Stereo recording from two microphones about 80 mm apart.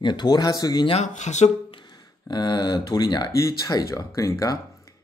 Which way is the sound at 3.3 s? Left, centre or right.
Left.